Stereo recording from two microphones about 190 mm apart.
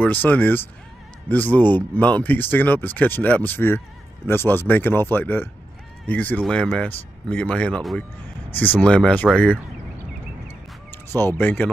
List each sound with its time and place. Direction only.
0.0 s speech: 10° left (ahead or behind)
10.9 s speech: 10° left (ahead or behind)